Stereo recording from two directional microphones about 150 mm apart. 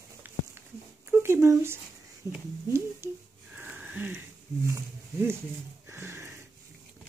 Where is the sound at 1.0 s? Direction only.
15° right (ahead or behind).